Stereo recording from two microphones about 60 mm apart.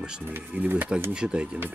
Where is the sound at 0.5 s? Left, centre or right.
Right.